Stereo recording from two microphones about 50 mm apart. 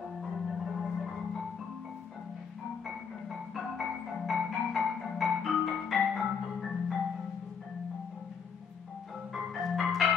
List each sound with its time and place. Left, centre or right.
0.2 s marimba: centre
2.9 s marimba: centre
9.3 s marimba: centre